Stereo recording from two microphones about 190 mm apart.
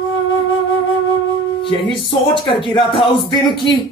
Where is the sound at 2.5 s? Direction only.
25° left (ahead or behind).